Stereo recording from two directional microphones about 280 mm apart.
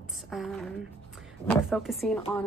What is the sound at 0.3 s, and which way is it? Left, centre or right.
A woman's voice, centre.